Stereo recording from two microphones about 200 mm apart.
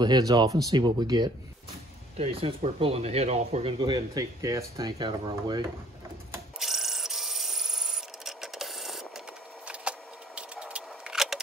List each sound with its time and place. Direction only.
0.0 s speech: 20° right (ahead or behind)
6.6 s rub: centre (ahead or behind)
9.7 s a sound: 5° right (ahead or behind)